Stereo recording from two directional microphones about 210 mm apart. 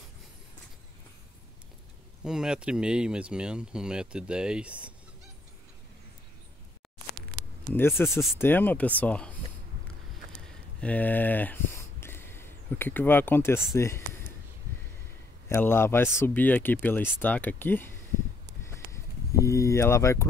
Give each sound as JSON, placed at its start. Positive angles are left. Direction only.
{"t": 2.2, "sound": "speech", "side_deg": -5}
{"t": 7.7, "sound": "speech", "side_deg": 10}
{"t": 8.1, "sound": "speech", "side_deg": 0}
{"t": 8.4, "sound": "speech", "side_deg": 10}
{"t": 10.8, "sound": "speech", "side_deg": 5}
{"t": 15.4, "sound": "speech", "side_deg": 10}
{"t": 18.7, "sound": "vehicle", "side_deg": 15}